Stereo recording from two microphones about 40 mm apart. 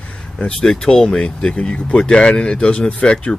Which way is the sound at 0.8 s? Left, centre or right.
Centre.